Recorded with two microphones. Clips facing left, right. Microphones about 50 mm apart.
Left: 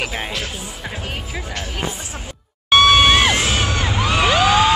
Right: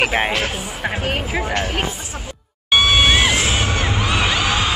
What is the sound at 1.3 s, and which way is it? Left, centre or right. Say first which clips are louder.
Speech: right 7 dB; right.